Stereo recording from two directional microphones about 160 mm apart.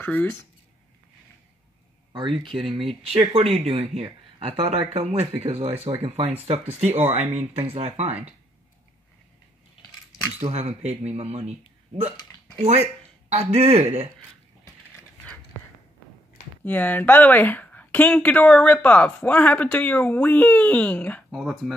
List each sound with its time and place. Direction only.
0.0 s speech: 10° left (ahead or behind)
2.8 s speech: 35° right (ahead or behind)
10.4 s speech: 40° right (ahead or behind)
12.6 s speech: 40° right (ahead or behind)
16.6 s speech: 10° left (ahead or behind)
21.4 s speech: 5° right (ahead or behind)